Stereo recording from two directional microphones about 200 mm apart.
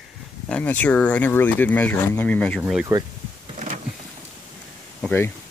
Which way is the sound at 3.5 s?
40° right (ahead or behind).